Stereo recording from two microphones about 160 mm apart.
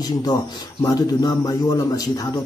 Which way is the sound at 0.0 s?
25° left (ahead or behind).